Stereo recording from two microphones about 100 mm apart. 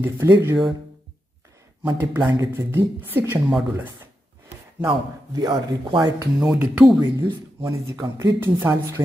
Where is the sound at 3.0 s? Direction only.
20° right (ahead or behind).